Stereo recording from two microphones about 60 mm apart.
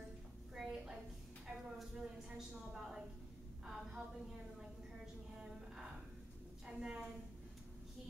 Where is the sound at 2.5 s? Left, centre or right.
Centre.